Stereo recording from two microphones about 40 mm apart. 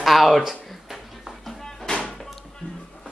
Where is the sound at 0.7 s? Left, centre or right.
Centre.